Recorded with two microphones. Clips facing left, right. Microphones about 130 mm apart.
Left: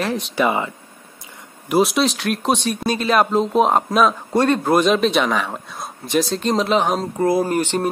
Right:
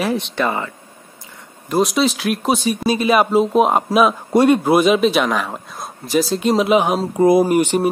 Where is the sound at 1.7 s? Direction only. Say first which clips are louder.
Even; centre (ahead or behind).